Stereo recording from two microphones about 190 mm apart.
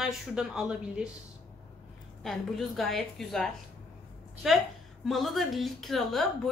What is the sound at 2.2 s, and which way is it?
A woman's voice, centre (ahead or behind).